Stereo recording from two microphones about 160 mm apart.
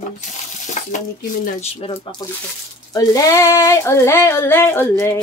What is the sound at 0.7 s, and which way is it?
Speech, 55° left (ahead or behind).